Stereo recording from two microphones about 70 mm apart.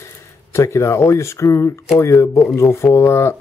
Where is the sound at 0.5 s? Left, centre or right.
Left.